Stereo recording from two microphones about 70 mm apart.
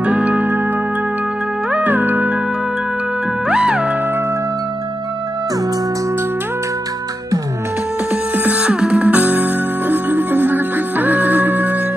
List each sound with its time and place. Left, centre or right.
0.0 s steel guitar: centre
1.7 s music: right
3.4 s music: centre
8.1 s music: centre